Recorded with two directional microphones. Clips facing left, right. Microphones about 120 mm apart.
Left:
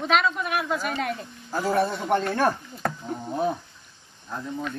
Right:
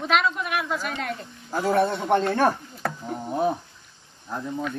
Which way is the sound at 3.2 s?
20° right (ahead or behind).